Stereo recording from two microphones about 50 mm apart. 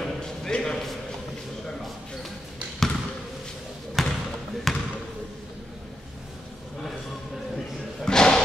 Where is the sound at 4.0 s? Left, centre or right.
Centre.